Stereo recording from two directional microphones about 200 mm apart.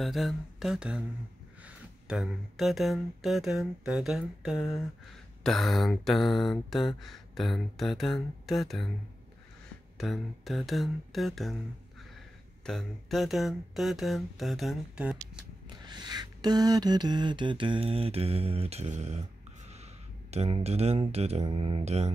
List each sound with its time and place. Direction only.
0.0 s speech: centre (ahead or behind)
2.0 s speech: centre (ahead or behind)
9.9 s speech: centre (ahead or behind)
12.6 s speech: centre (ahead or behind)
15.8 s a sound: 20° right (ahead or behind)
20.2 s speech: 30° right (ahead or behind)